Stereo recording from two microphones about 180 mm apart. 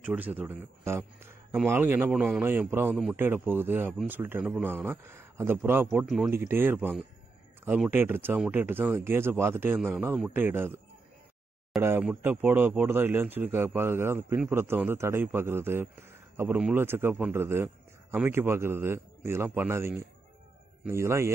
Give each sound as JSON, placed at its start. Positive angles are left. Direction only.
{"t": 0.0, "sound": "speech", "side_deg": -10}
{"t": 5.9, "sound": "speech", "side_deg": 0}
{"t": 6.3, "sound": "speech", "side_deg": -15}
{"t": 11.8, "sound": "speech", "side_deg": -10}